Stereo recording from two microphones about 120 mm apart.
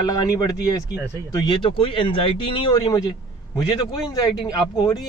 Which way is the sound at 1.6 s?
45° left (ahead or behind).